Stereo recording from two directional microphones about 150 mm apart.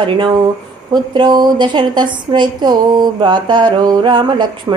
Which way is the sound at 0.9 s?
30° right (ahead or behind).